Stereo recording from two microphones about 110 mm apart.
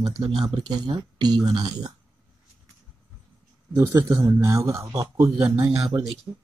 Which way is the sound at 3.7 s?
25° right (ahead or behind).